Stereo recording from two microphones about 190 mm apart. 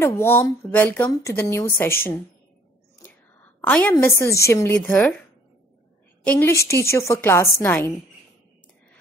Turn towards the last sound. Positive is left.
turn(degrees=15)  # may be behind; listen again after turning